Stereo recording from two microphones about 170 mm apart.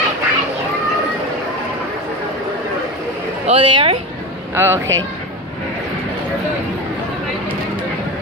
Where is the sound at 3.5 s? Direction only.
35° right (ahead or behind).